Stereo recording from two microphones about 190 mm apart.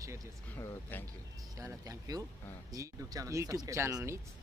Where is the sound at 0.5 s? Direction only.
15° left (ahead or behind).